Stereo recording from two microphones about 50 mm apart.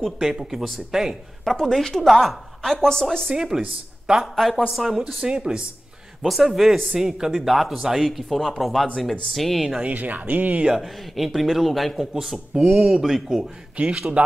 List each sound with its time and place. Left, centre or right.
0.2 s speech: centre
1.6 s a woman's voice: centre
3.3 s speech: centre
4.4 s a woman's voice: centre
4.7 s speech: centre
6.2 s speech: centre
9.8 s speech: right
10.7 s speech: centre
13.8 s speech: right